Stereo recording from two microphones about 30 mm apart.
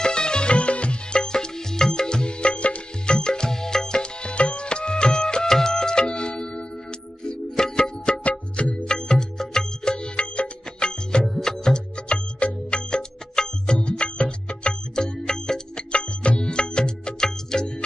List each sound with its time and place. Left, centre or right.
0.0 s music: left
0.6 s music: left
1.1 s music: left
2.2 s music: left
3.1 s music: left
4.0 s music: left
8.3 s music: left
8.8 s music: left
12.1 s music: left; by 15.8 s centre
15.9 s music: left